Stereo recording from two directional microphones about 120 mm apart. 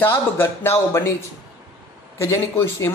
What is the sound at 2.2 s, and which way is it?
Speech, 25° left (ahead or behind).